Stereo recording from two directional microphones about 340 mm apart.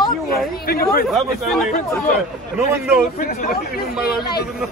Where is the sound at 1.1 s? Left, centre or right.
Centre.